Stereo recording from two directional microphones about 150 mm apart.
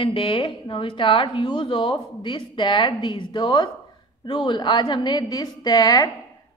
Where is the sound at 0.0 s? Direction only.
35° left (ahead or behind).